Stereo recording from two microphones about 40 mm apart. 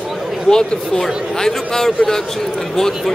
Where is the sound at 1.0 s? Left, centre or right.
Centre.